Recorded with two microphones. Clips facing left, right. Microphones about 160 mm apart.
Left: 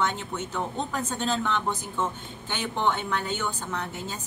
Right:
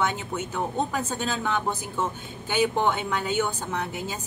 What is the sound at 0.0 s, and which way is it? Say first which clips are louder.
A woman's voice: right 1 dB; 10° right (ahead or behind).